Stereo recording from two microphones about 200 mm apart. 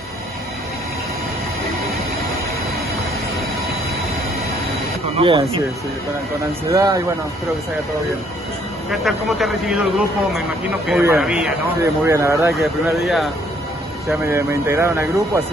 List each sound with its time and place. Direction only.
5.2 s speech: 25° right (ahead or behind)
6.7 s speech: 15° right (ahead or behind)
9.0 s speech: centre (ahead or behind)
12.5 s speech: centre (ahead or behind)
14.2 s speech: 15° right (ahead or behind)